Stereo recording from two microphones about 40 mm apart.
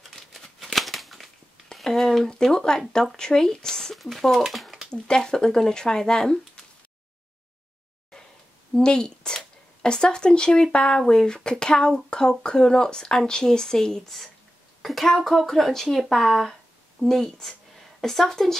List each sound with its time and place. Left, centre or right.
0.4 s a sound: centre
1.9 s speech: centre
3.9 s speech: centre
4.9 s speech: centre
8.7 s a woman's voice: centre